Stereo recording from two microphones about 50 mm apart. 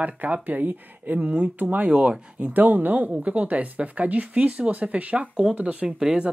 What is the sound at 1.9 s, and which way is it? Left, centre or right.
Speech, centre.